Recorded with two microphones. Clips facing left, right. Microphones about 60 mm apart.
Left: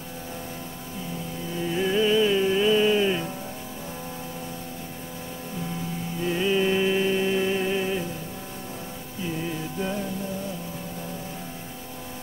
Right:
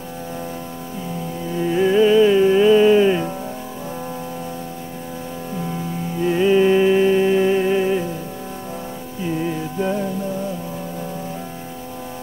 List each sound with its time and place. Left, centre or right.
1.6 s music: centre
6.2 s music: centre
9.4 s music: right